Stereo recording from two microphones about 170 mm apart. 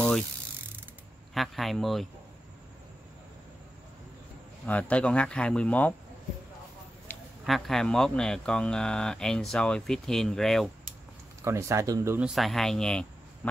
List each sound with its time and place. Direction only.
1.3 s speech: centre (ahead or behind)
4.6 s speech: 10° left (ahead or behind)
7.1 s a sound: 10° left (ahead or behind)
7.4 s speech: centre (ahead or behind)
11.4 s speech: 15° right (ahead or behind)
12.3 s speech: centre (ahead or behind)